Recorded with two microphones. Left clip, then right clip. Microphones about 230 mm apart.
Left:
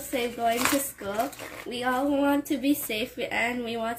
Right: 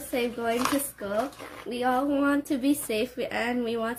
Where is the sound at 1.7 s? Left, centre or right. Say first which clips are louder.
Right 1 dB; right.